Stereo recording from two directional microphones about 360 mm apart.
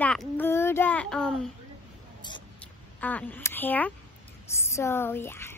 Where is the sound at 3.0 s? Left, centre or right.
Centre.